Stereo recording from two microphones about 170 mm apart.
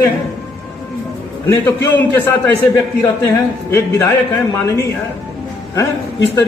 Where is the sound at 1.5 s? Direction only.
15° left (ahead or behind).